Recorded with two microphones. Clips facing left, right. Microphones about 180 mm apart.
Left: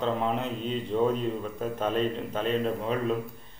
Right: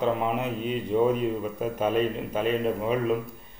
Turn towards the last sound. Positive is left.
turn(degrees=-10)  # may be behind; listen again after turning